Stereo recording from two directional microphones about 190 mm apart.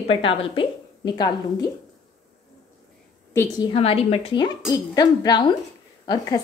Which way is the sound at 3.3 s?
15° left (ahead or behind).